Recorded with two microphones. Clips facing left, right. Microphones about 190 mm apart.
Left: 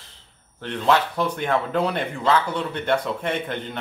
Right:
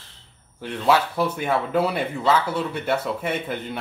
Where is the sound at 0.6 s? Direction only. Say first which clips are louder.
Even; 10° right (ahead or behind).